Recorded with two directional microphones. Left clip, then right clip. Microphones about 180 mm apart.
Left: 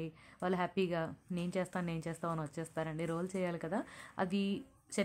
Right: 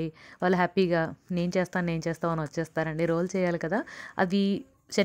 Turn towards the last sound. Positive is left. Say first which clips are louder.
# right 10 dB
turn(degrees=-40)  # may be behind; listen again after turning